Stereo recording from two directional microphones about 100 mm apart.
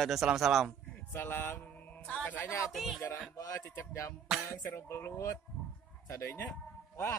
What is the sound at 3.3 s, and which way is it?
Speech, 35° left (ahead or behind).